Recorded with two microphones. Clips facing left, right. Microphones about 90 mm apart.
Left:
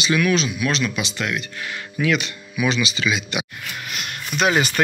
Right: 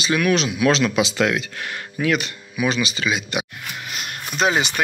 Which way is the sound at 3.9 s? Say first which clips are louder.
Even; 35° right (ahead or behind).